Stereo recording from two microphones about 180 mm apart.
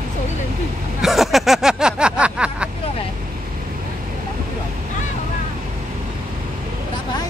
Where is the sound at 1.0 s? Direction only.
Centre (ahead or behind).